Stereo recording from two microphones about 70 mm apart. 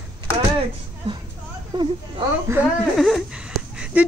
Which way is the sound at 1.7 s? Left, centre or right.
Right.